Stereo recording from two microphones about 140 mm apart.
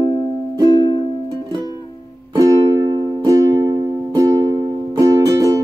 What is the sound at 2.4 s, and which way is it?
Music, 25° right (ahead or behind).